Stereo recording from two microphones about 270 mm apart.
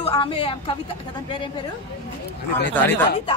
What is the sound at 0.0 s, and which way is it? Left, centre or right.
Speech, centre.